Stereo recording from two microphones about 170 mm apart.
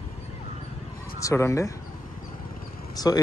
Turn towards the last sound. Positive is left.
turn(degrees=20)  # may be behind; listen again after turning